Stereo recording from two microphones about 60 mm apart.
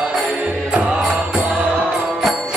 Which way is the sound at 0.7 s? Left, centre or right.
Centre.